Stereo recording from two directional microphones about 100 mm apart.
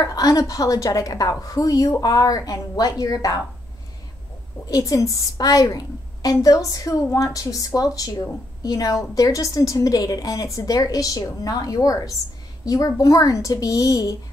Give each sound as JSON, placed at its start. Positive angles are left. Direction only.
{"t": 0.0, "sound": "a woman's voice", "side_deg": 35}
{"t": 4.6, "sound": "a woman's voice", "side_deg": 35}